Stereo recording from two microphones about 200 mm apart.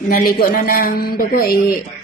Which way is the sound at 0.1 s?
45° left (ahead or behind).